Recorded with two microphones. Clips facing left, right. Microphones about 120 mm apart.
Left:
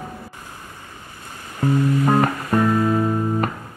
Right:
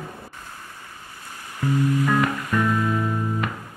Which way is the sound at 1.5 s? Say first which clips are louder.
Left 3 dB; 35° left (ahead or behind).